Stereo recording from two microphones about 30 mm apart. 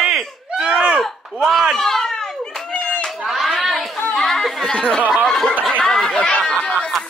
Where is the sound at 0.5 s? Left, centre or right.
Right.